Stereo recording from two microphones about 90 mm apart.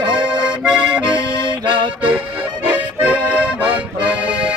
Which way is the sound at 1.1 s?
65° right (ahead or behind).